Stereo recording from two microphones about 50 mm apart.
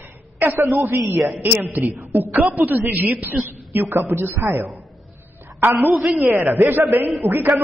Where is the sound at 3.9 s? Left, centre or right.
Right.